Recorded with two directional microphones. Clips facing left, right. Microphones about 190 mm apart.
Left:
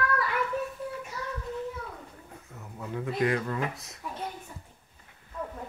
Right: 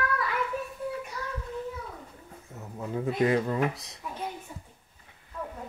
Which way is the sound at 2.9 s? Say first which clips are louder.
Right 3 dB; 25° right (ahead or behind).